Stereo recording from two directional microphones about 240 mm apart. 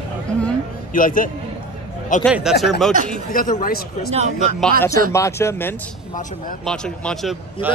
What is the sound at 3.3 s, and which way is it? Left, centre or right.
Speech, left.